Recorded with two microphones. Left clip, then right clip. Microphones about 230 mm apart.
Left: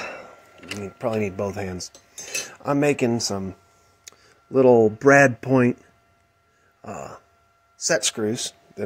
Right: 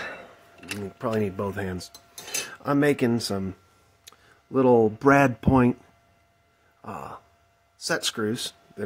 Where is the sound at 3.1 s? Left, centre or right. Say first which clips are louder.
Left 2 dB; centre.